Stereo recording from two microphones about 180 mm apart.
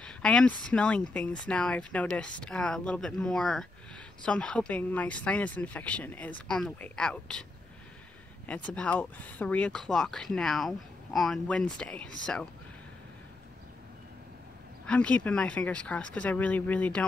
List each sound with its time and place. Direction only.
0.0 s speech: 5° left (ahead or behind)
8.5 s speech: 5° left (ahead or behind)
14.9 s speech: 5° left (ahead or behind)